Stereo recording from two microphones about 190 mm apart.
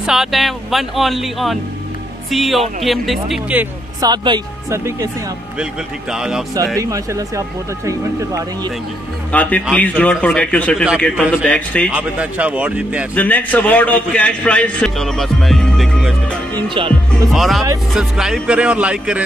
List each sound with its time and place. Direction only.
0.0 s speech: centre (ahead or behind)
4.0 s speech: 25° right (ahead or behind)
5.6 s speech: 5° right (ahead or behind)
6.8 s speech: 15° right (ahead or behind)
9.3 s a man's voice: 10° left (ahead or behind)
11.9 s speech: 5° right (ahead or behind)
13.1 s a man's voice: 10° left (ahead or behind)